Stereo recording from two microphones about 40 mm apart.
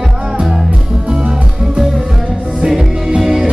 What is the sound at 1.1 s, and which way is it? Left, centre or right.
Music, centre.